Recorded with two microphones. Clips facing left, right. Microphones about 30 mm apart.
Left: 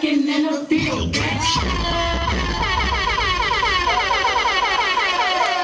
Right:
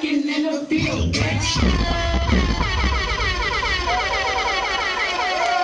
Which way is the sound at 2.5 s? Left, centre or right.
Centre.